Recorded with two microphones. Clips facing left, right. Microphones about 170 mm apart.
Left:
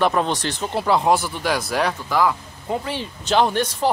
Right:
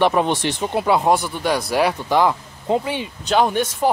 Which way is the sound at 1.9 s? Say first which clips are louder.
Right 3 dB; 25° right (ahead or behind).